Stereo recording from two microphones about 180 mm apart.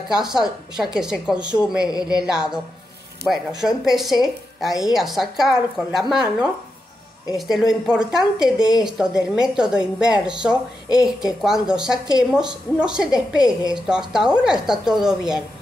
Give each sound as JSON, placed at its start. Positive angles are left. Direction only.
{"t": 0.1, "sound": "a woman's voice", "side_deg": -5}
{"t": 1.9, "sound": "speech", "side_deg": 20}
{"t": 2.2, "sound": "a woman's voice", "side_deg": -5}